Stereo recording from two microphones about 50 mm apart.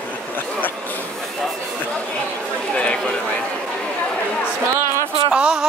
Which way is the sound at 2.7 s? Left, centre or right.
Left.